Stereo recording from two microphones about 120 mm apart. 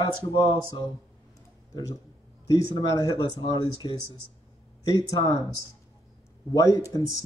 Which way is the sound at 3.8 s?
35° left (ahead or behind).